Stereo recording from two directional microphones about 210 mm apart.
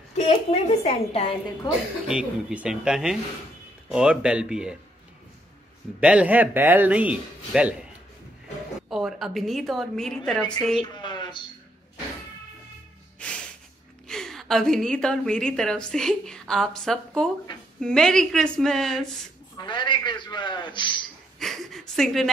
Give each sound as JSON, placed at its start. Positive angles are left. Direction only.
{"t": 0.1, "sound": "a woman's voice", "side_deg": 30}
{"t": 2.0, "sound": "a woman's voice", "side_deg": -5}
{"t": 5.9, "sound": "a man's voice", "side_deg": -5}
{"t": 8.8, "sound": "a woman's voice", "side_deg": 0}
{"t": 11.0, "sound": "a sound", "side_deg": 20}
{"t": 13.2, "sound": "snort", "side_deg": 5}
{"t": 14.0, "sound": "a woman's voice", "side_deg": 0}
{"t": 19.5, "sound": "a man's voice", "side_deg": 20}
{"t": 21.4, "sound": "speech", "side_deg": 0}